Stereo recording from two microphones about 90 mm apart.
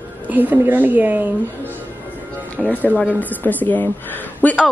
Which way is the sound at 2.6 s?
20° left (ahead or behind).